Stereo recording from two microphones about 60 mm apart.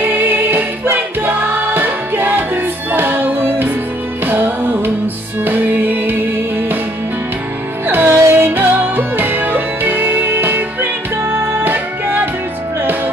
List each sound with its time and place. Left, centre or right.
0.0 s choir: right
4.3 s music: right
7.8 s music: right